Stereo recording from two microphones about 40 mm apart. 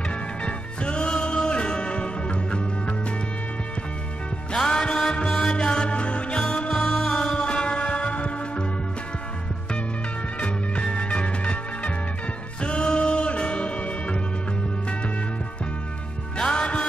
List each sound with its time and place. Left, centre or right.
0.1 s music: left
4.5 s music: centre
10.4 s music: left
16.3 s music: left